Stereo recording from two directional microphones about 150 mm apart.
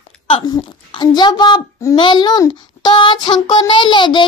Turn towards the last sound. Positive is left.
turn(degrees=30)  # may be behind; listen again after turning